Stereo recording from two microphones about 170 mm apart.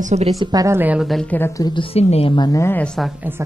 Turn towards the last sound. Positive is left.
turn(degrees=-15)  # may be behind; listen again after turning